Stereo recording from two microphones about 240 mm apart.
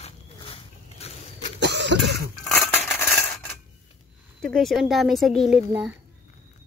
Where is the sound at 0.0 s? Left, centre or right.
Left.